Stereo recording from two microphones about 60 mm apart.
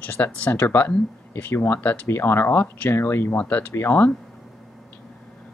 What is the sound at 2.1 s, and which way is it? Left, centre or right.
Speech, left.